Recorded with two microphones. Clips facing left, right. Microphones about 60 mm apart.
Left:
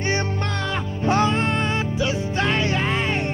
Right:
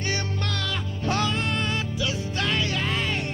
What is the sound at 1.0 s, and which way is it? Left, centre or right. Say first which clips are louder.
Music: left 6 dB; left.